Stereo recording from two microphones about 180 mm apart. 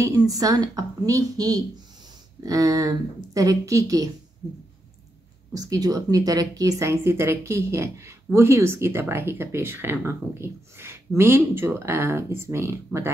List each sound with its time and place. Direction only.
0.0 s a woman's voice: 20° right (ahead or behind)
5.5 s a woman's voice: 20° right (ahead or behind)